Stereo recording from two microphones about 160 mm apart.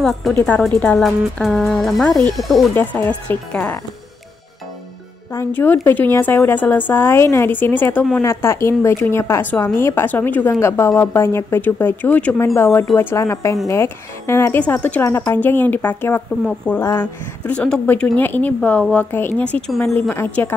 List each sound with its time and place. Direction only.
0.0 s speech: centre (ahead or behind)
0.3 s a woman's voice: 10° left (ahead or behind)
0.9 s a woman's voice: centre (ahead or behind)
5.3 s a woman's voice: 15° left (ahead or behind)